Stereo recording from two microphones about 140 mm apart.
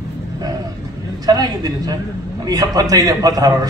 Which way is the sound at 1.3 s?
25° right (ahead or behind).